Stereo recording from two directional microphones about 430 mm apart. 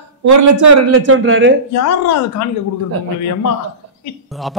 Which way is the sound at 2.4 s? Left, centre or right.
Left.